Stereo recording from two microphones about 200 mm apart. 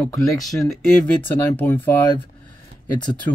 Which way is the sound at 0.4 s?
Centre (ahead or behind).